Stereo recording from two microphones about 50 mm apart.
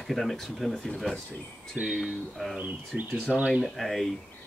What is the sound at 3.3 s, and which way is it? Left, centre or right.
Speech, centre.